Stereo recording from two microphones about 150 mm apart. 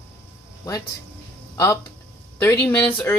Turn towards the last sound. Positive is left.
turn(degrees=10)  # may be behind; listen again after turning